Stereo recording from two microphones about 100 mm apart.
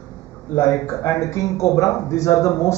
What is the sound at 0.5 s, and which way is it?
A man's voice, 30° left (ahead or behind).